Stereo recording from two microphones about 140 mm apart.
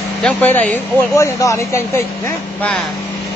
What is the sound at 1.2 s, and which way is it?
Speech, 20° left (ahead or behind).